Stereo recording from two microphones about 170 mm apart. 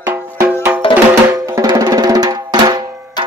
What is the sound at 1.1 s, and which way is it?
Drum, 15° right (ahead or behind).